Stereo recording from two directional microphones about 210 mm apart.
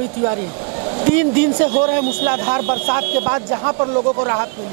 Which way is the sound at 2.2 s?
15° right (ahead or behind).